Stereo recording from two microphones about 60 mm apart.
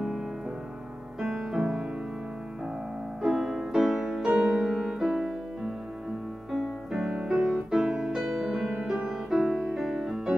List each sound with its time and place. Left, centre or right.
1.2 s music: centre
3.2 s music: centre
6.5 s music: centre